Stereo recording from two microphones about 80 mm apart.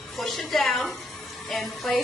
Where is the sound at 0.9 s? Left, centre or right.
Centre.